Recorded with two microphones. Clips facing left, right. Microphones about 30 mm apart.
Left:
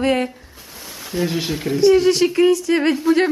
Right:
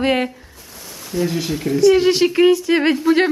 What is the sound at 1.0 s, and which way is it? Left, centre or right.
Speech, centre.